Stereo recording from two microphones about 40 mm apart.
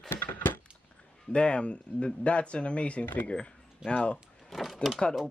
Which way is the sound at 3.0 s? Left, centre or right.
Left.